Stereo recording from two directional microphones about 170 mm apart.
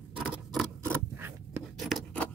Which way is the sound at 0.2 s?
5° right (ahead or behind).